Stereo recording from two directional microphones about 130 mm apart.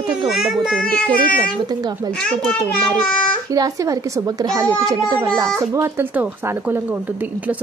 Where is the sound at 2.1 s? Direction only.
5° left (ahead or behind).